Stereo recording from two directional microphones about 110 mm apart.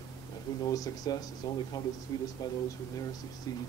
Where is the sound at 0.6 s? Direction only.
35° left (ahead or behind).